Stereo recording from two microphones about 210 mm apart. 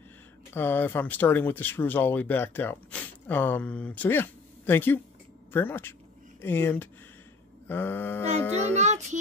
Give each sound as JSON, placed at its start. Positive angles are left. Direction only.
{"t": 0.5, "sound": "speech", "side_deg": 10}
{"t": 8.7, "sound": "child singing", "side_deg": -35}